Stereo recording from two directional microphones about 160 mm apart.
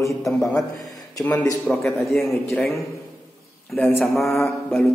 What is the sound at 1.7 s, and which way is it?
Speech, centre (ahead or behind).